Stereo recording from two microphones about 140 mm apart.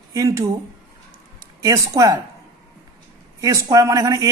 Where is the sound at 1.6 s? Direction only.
25° right (ahead or behind).